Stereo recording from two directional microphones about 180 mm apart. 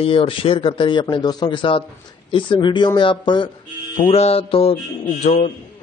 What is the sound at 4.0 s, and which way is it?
Mantra, 35° left (ahead or behind).